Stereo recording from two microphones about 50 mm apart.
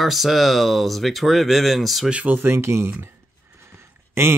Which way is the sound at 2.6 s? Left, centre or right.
Right.